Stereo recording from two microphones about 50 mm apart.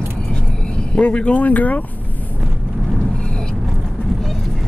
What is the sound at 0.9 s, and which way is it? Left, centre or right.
Speech, left.